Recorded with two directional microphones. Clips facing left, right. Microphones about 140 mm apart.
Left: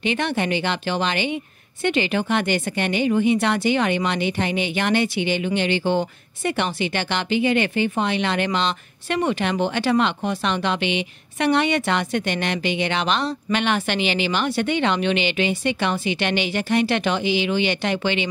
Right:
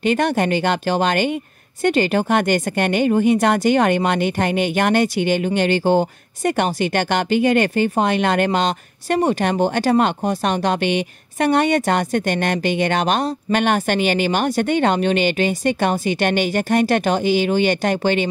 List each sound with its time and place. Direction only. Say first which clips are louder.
0.0 s a woman's voice: right 5 dB; 45° right (ahead or behind)